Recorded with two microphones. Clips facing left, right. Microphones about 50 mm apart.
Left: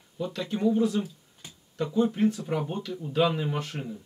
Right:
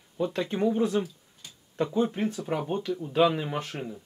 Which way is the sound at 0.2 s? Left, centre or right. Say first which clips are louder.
Right 1 dB; right.